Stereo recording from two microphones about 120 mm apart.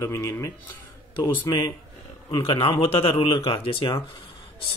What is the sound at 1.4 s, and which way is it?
Speech, 40° left (ahead or behind).